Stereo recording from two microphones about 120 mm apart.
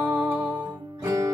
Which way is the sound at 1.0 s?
25° right (ahead or behind).